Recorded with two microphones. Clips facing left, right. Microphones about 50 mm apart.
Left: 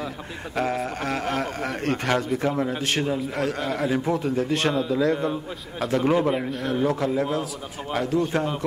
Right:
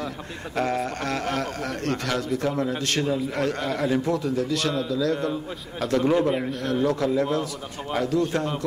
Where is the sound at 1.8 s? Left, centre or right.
Left.